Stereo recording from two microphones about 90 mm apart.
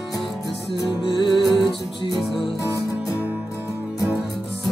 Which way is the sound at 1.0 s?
60° left (ahead or behind).